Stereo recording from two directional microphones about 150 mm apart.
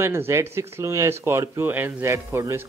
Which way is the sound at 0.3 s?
15° right (ahead or behind).